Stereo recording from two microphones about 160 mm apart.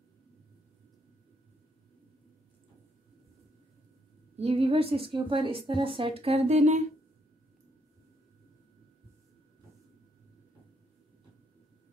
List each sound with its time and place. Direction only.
4.4 s a woman's voice: 40° right (ahead or behind)